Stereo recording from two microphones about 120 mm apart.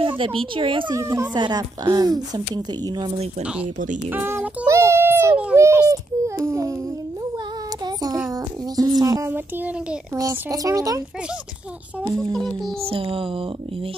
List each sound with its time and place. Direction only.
0.0 s speech: 45° right (ahead or behind)
0.9 s speech: 25° right (ahead or behind)
1.3 s a woman's voice: 35° right (ahead or behind)
4.1 s a sound: 20° right (ahead or behind)
5.9 s baby cry: 25° right (ahead or behind)
7.8 s child singing: 30° right (ahead or behind)
8.3 s music: 30° right (ahead or behind)
10.1 s speech: 30° right (ahead or behind)
12.4 s a child's voice: 5° left (ahead or behind)
12.8 s speech: 50° right (ahead or behind)